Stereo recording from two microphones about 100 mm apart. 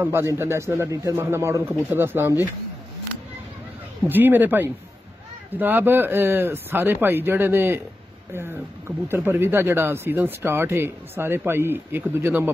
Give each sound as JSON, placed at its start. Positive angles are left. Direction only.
{"t": 0.0, "sound": "speech", "side_deg": -25}
{"t": 4.1, "sound": "speech", "side_deg": -20}